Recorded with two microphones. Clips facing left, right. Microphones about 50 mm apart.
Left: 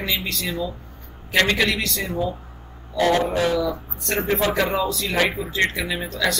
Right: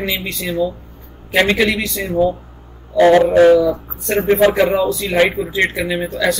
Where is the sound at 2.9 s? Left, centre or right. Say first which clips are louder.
Right 10 dB; right.